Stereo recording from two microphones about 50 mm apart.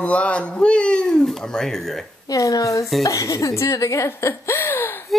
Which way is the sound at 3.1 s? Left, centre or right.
Left.